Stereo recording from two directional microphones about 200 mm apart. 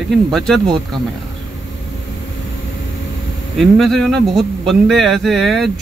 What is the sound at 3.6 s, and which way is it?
Speech, centre (ahead or behind).